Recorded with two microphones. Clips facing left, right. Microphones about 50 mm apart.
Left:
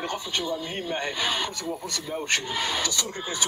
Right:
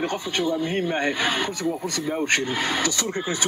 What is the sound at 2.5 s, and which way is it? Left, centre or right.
Speech, centre.